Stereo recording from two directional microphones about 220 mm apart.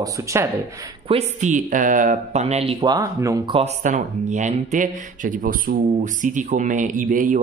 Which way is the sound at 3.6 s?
30° right (ahead or behind).